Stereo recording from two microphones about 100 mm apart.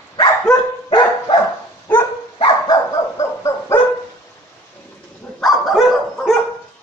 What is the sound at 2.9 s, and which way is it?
Dog, 30° left (ahead or behind).